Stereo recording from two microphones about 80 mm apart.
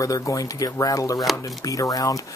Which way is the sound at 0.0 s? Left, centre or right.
Left.